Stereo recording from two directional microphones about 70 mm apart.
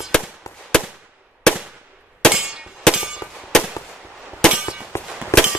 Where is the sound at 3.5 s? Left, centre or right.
Centre.